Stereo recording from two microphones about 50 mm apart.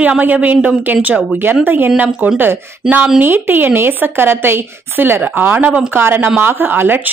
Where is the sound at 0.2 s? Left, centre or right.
Right.